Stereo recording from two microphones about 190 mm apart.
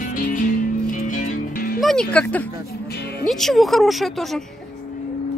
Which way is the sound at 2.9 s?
55° left (ahead or behind).